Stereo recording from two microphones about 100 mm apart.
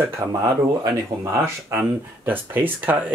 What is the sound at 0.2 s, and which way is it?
Speech, 35° right (ahead or behind).